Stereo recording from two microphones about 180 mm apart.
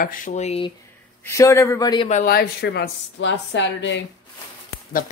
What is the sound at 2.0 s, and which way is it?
Speech, 45° left (ahead or behind).